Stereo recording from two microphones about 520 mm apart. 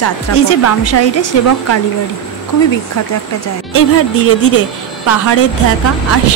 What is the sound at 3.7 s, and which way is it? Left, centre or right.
A woman's voice, left.